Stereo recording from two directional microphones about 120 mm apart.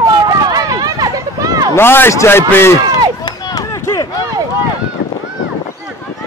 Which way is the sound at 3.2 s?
35° left (ahead or behind).